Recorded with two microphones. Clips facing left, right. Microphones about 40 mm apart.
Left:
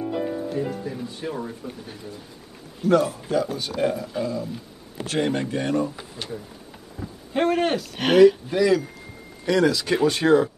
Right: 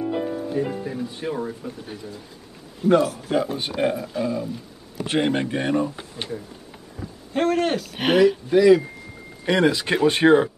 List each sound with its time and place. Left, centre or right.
0.0 s music: centre
0.5 s speech: centre
2.8 s speech: right
3.7 s speech: centre
7.0 s speech: centre
9.4 s speech: right